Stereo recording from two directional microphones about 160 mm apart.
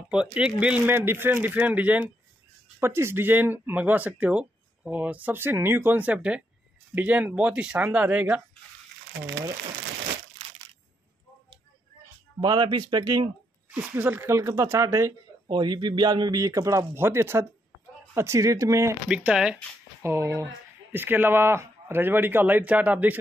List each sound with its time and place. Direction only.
0.1 s speech: 5° right (ahead or behind)
12.4 s speech: 30° right (ahead or behind)
13.7 s speech: 10° right (ahead or behind)
19.0 s speech: 5° right (ahead or behind)
20.0 s speech: 15° right (ahead or behind)